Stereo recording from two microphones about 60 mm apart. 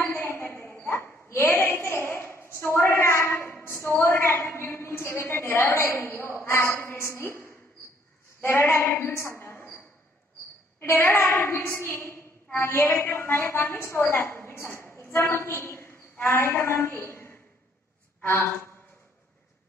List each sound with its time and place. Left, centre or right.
0.0 s a sound: left
0.8 s a woman's voice: left
10.8 s a woman's voice: left